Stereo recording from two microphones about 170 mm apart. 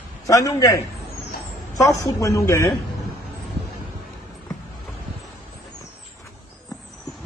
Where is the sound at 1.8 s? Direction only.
20° left (ahead or behind).